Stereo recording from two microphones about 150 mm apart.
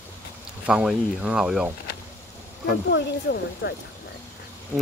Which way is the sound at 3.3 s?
90° left.